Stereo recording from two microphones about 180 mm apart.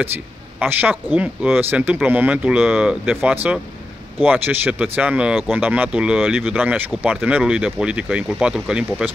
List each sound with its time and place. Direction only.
0.6 s speech: 10° right (ahead or behind)